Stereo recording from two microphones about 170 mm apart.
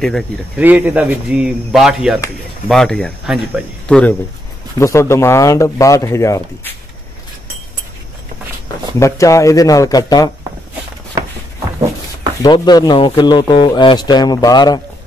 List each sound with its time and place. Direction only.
0.6 s speech: 10° right (ahead or behind)
4.7 s speech: 15° left (ahead or behind)
9.0 s speech: 20° left (ahead or behind)
12.4 s speech: 25° left (ahead or behind)